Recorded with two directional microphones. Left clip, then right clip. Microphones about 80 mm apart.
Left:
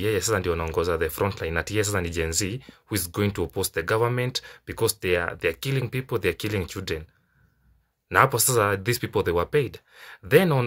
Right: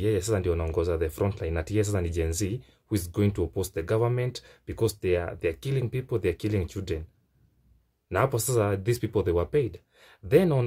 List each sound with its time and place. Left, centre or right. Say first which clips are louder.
0.0 s speech: left 2 dB; right
8.1 s speech: left 6 dB; right